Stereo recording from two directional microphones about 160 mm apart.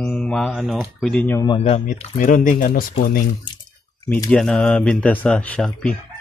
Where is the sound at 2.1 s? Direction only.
55° left (ahead or behind).